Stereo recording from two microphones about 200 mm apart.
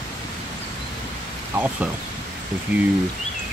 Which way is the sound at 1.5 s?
10° right (ahead or behind).